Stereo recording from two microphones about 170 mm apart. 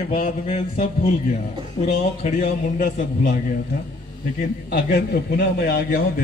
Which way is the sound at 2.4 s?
55° left (ahead or behind).